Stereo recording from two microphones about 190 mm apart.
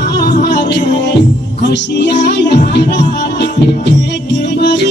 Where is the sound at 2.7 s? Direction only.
65° left (ahead or behind).